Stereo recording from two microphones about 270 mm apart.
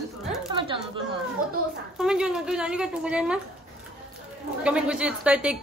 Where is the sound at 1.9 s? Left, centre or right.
Centre.